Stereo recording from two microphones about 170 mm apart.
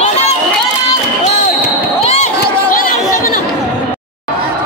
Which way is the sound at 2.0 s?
40° left (ahead or behind).